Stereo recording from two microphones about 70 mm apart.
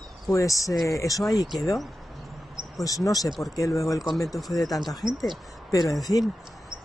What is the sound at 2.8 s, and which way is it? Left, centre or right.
Speech, left.